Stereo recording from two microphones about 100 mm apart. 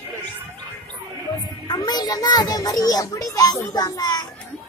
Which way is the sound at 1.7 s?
45° left (ahead or behind).